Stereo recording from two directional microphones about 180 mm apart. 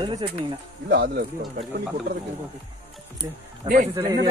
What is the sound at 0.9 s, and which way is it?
Speech, 55° right (ahead or behind).